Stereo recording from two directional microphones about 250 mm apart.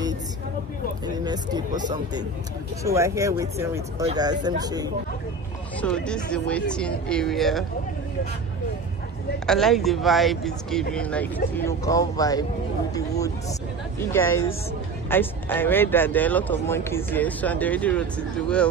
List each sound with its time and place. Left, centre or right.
1.0 s speech: centre
2.8 s speech: centre
5.8 s speech: centre
9.5 s speech: centre
13.9 s speech: centre